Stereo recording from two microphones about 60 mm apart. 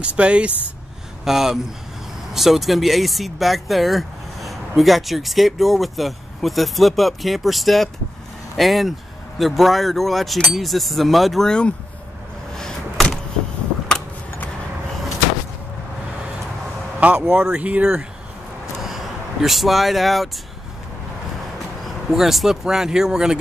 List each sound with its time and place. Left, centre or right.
0.0 s speech: centre
1.2 s speech: centre
12.5 s power windows: centre
17.0 s speech: right
18.8 s vehicle: centre
21.8 s speech: centre